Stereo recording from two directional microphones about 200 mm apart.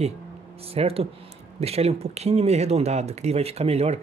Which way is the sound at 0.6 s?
30° right (ahead or behind).